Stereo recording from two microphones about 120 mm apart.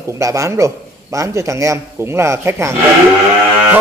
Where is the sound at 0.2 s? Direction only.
25° right (ahead or behind).